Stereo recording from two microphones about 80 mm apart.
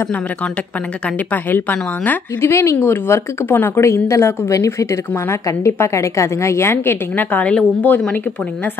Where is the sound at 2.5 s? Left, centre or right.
Left.